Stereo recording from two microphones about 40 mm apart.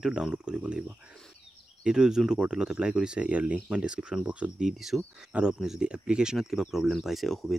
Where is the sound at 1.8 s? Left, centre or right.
Centre.